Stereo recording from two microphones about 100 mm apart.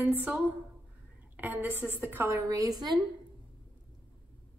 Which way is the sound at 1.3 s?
15° right (ahead or behind).